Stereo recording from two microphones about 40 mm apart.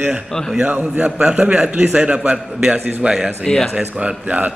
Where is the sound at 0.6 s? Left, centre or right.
Right.